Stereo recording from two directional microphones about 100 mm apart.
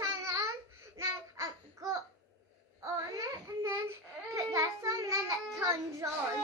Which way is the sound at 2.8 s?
30° right (ahead or behind).